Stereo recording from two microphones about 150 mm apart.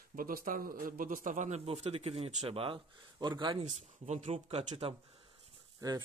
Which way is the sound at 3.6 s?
45° right (ahead or behind).